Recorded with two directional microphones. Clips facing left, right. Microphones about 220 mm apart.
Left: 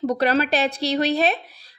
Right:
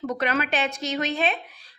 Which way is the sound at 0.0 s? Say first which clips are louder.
Left 6 dB; 35° left (ahead or behind).